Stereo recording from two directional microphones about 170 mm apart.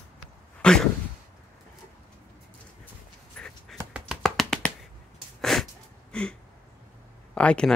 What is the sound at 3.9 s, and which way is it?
Tap, centre (ahead or behind).